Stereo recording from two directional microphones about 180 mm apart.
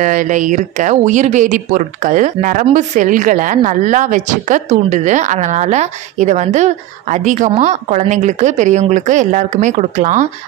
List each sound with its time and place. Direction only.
0.0 s a woman's voice: 45° right (ahead or behind)